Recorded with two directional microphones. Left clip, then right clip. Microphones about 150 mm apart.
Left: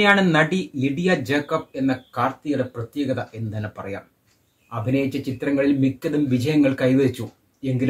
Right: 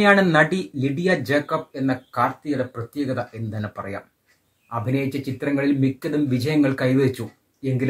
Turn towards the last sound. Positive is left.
turn(degrees=5)  # may be behind; listen again after turning